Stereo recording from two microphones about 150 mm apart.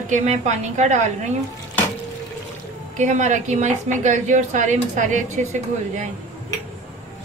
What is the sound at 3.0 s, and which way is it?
A woman's voice, 50° right (ahead or behind).